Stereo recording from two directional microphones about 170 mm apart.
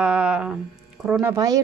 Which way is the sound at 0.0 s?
5° right (ahead or behind).